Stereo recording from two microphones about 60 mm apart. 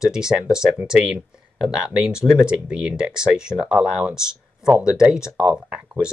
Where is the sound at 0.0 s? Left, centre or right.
Centre.